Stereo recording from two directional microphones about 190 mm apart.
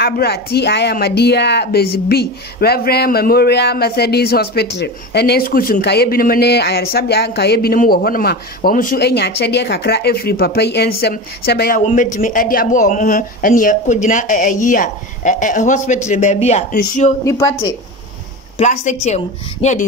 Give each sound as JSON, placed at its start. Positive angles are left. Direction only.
{"t": 0.0, "sound": "a woman's voice", "side_deg": 55}
{"t": 11.8, "sound": "a woman's voice", "side_deg": 45}
{"t": 17.2, "sound": "a woman's voice", "side_deg": 15}
{"t": 18.6, "sound": "a woman's voice", "side_deg": 40}